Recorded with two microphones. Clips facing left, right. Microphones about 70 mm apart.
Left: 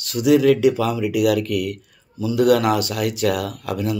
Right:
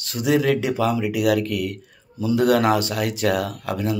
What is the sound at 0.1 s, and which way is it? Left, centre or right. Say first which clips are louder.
Speech: left 5 dB; right.